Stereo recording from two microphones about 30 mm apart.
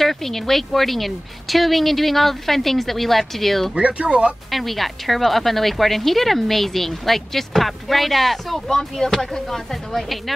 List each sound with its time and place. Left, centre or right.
0.0 s a woman's voice: centre
3.8 s speech: right
4.5 s a woman's voice: centre
8.6 s speech: centre